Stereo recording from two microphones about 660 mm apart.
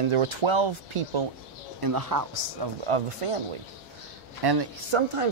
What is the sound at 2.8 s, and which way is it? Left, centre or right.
Speech, right.